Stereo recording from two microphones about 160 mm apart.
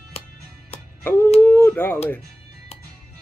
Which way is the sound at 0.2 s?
40° left (ahead or behind).